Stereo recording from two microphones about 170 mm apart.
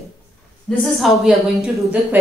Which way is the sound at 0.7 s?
Centre (ahead or behind).